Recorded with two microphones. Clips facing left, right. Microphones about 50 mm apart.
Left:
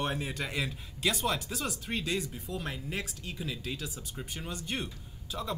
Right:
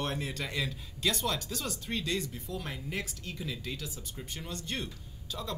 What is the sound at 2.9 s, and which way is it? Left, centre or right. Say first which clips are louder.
Speech: even; centre.